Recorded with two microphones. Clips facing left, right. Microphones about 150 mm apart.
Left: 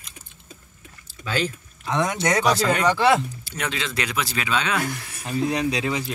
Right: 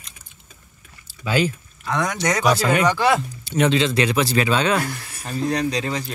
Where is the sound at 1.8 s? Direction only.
20° left (ahead or behind).